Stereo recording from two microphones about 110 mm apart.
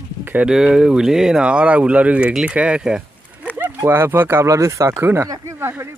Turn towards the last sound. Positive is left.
turn(degrees=-20)  # may be behind; listen again after turning